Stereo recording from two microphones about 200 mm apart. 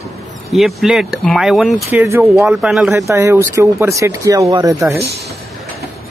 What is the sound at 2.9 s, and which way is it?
Speech, 15° right (ahead or behind).